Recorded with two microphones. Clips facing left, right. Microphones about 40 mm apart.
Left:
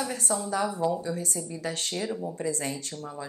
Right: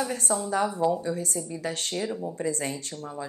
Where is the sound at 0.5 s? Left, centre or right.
Right.